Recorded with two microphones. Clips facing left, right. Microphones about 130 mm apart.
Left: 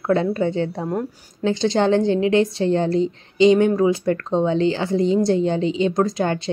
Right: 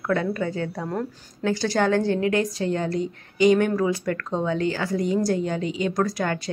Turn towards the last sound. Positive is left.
turn(degrees=25)  # may be behind; listen again after turning